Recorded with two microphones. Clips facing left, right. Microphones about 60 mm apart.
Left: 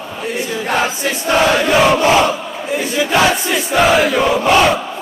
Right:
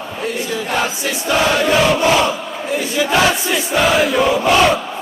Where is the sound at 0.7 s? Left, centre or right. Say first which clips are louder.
Left 3 dB; left.